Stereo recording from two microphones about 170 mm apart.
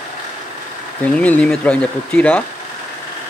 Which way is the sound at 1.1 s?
10° left (ahead or behind).